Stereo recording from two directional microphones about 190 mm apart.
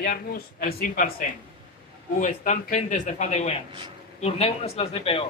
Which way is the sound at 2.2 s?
40° left (ahead or behind).